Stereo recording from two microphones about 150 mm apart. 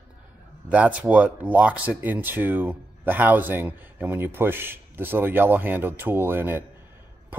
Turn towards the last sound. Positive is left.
turn(degrees=-15)  # may be behind; listen again after turning